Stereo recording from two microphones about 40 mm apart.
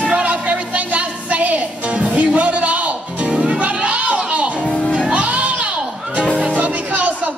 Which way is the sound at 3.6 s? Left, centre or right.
Right.